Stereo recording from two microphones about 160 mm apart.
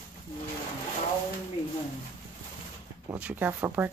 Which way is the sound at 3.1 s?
10° right (ahead or behind).